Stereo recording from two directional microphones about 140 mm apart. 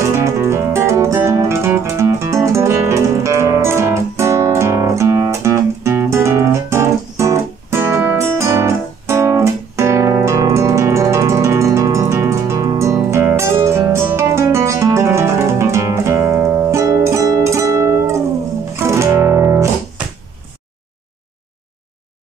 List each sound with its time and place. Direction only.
0.0 s music: 20° right (ahead or behind)